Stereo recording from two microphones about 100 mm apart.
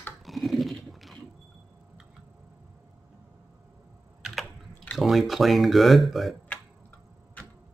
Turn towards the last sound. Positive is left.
turn(degrees=0)  # may be behind; listen again after turning